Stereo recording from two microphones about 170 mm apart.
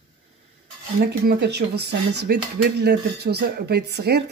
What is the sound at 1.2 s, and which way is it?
Speech, 75° right (ahead or behind).